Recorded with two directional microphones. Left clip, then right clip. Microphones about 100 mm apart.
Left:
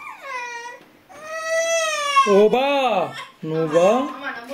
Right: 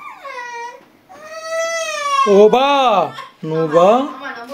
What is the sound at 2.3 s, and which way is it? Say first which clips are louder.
Speech: right 6 dB; 20° right (ahead or behind).